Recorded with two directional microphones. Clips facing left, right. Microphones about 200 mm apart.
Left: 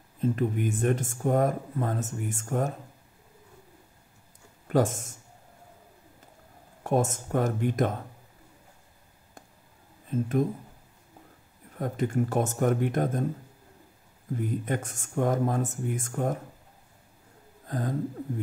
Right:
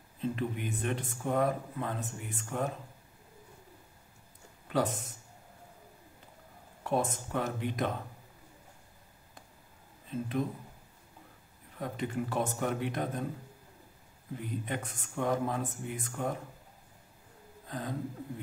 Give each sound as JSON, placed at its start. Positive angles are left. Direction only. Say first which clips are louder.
{"t": 0.2, "sound": "speech", "louder": "left 7 dB", "side_deg": 45}
{"t": 4.6, "sound": "speech", "louder": "left 6 dB", "side_deg": 45}
{"t": 6.8, "sound": "speech", "louder": "left 5 dB", "side_deg": 45}
{"t": 10.1, "sound": "speech", "louder": "left 7 dB", "side_deg": 45}
{"t": 11.8, "sound": "speech", "louder": "left 7 dB", "side_deg": 45}
{"t": 14.3, "sound": "speech", "louder": "left 7 dB", "side_deg": 45}
{"t": 17.6, "sound": "a sound", "louder": "left 6 dB", "side_deg": 45}